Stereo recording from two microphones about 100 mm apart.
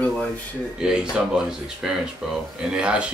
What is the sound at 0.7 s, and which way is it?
Speech, 5° right (ahead or behind).